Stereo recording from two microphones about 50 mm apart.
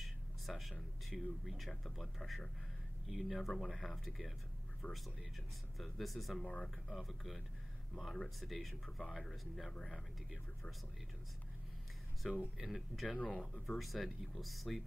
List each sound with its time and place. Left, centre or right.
0.0 s a sound: centre
1.1 s speech: centre
4.8 s speech: left
5.8 s speech: centre
12.2 s speech: centre